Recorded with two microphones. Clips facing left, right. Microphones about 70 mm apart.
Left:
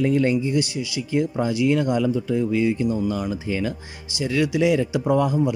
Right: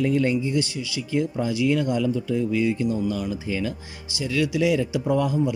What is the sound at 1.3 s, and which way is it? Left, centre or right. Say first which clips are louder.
A man's voice: left 2 dB; left.